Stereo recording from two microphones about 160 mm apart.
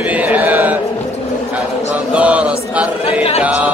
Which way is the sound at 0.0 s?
10° right (ahead or behind).